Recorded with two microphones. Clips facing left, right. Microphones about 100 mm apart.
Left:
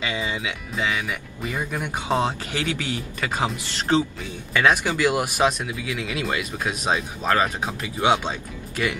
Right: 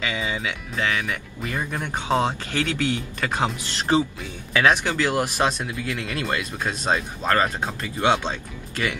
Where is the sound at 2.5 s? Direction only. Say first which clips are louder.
Right 3 dB; 15° left (ahead or behind).